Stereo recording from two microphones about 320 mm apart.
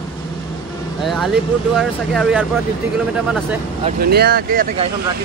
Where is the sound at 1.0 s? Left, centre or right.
Centre.